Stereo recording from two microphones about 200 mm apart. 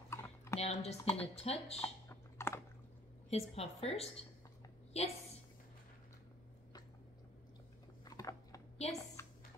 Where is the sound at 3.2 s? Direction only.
30° left (ahead or behind).